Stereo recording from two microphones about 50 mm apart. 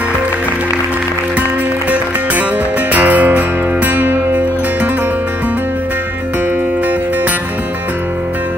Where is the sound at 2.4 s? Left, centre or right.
Right.